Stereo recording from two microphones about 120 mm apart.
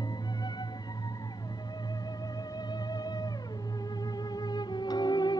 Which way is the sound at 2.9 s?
30° left (ahead or behind).